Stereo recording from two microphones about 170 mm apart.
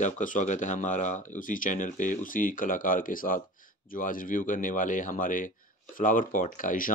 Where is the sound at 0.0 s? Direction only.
50° left (ahead or behind).